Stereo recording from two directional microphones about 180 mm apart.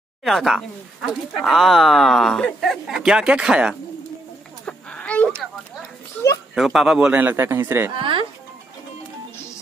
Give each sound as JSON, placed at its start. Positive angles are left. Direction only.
{"t": 0.2, "sound": "speech", "side_deg": 0}
{"t": 4.6, "sound": "a sound", "side_deg": 5}
{"t": 6.5, "sound": "a man's voice", "side_deg": 0}
{"t": 8.0, "sound": "speech", "side_deg": -30}